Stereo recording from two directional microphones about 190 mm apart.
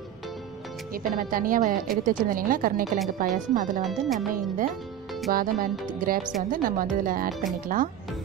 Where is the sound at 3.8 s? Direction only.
Centre (ahead or behind).